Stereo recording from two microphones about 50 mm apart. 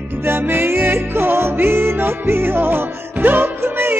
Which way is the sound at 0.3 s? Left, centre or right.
Right.